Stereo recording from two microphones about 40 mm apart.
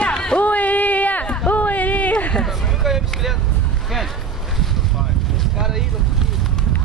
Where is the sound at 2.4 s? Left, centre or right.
Centre.